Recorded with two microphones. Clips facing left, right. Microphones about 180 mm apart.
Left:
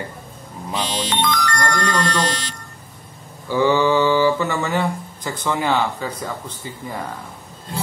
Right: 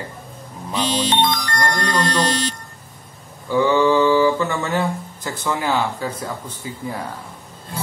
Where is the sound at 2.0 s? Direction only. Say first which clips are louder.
Right 2 dB; 40° right (ahead or behind).